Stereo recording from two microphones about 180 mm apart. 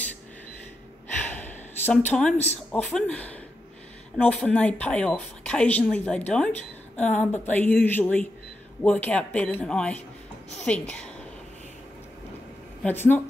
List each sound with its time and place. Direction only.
1.2 s a sound: 10° left (ahead or behind)
2.3 s speech: 35° left (ahead or behind)
2.7 s a woman's voice: 5° left (ahead or behind)
12.8 s a woman's voice: 10° left (ahead or behind)